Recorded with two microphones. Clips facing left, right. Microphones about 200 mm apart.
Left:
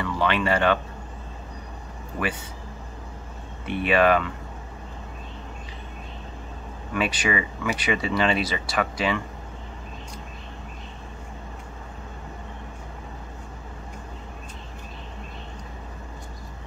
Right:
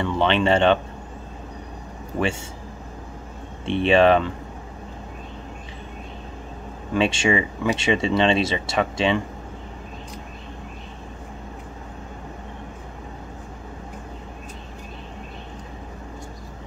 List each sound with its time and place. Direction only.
0.0 s speech: 25° right (ahead or behind)
3.6 s speech: 25° right (ahead or behind)
6.9 s speech: 25° right (ahead or behind)